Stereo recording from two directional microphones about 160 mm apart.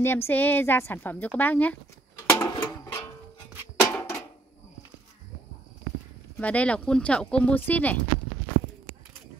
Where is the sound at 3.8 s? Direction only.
10° left (ahead or behind).